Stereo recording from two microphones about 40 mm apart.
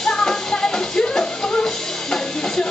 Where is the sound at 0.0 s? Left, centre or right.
Centre.